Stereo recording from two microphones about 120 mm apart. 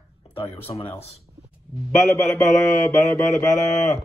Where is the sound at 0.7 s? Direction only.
45° left (ahead or behind).